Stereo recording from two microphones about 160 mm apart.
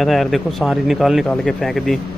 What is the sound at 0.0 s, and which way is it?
Speech, centre (ahead or behind).